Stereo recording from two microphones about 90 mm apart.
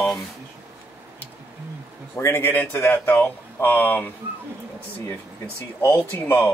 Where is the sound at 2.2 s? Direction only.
20° left (ahead or behind).